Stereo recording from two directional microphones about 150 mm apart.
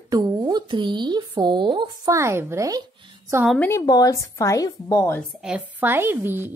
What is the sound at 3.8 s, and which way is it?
A woman's voice, 25° left (ahead or behind).